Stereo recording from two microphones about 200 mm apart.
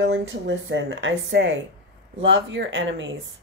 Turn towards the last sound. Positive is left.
turn(degrees=-70)  # may be behind; listen again after turning